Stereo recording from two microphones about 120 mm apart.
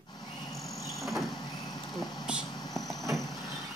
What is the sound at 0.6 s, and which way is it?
Vehicle, 30° left (ahead or behind).